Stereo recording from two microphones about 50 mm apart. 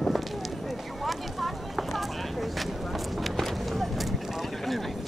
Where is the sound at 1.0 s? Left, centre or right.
Centre.